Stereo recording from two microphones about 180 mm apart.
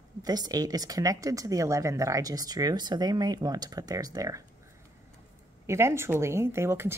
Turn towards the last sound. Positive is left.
turn(degrees=-15)  # may be behind; listen again after turning